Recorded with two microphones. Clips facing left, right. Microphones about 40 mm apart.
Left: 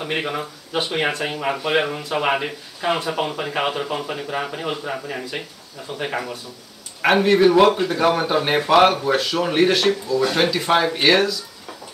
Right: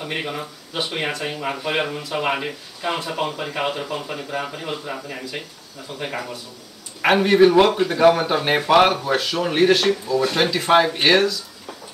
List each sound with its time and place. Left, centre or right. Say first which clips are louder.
0.1 s speech: left 3 dB; centre
0.7 s speech: left 3 dB; left
5.9 s speech: left 3 dB; left
7.0 s speech: right 1 dB; centre